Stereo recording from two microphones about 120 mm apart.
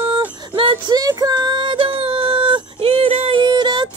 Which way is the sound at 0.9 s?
35° right (ahead or behind).